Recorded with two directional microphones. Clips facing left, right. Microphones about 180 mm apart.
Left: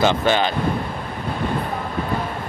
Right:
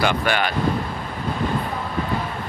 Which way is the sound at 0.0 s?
25° left (ahead or behind).